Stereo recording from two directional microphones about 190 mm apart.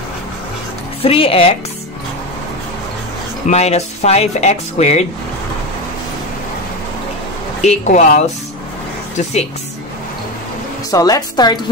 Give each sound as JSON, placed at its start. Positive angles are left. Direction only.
{"t": 1.0, "sound": "a woman's voice", "side_deg": 30}
{"t": 3.4, "sound": "speech", "side_deg": 35}
{"t": 7.6, "sound": "speech", "side_deg": 40}
{"t": 10.9, "sound": "a woman's voice", "side_deg": 20}